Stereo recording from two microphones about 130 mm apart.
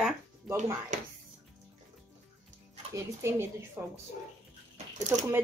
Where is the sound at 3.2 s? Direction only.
20° right (ahead or behind).